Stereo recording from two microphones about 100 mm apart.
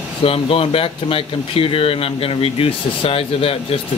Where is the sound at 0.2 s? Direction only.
70° left (ahead or behind).